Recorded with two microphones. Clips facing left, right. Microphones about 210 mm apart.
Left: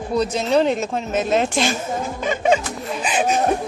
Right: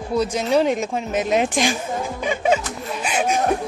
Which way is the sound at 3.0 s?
10° right (ahead or behind).